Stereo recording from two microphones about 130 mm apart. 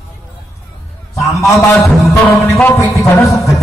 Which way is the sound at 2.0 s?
20° left (ahead or behind).